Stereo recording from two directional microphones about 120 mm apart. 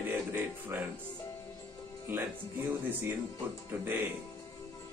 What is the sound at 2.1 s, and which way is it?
Speech, 15° right (ahead or behind).